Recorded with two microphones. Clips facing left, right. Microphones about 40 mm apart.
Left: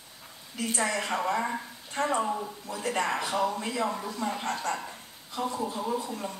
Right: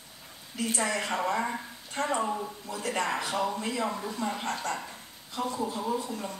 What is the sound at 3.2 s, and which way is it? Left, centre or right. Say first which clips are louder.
A woman's voice: left 2 dB; centre.